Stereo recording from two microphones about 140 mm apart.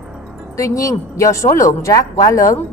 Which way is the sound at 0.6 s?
25° left (ahead or behind).